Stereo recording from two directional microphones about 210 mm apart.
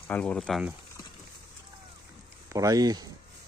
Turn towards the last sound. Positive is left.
turn(degrees=-20)  # may be behind; listen again after turning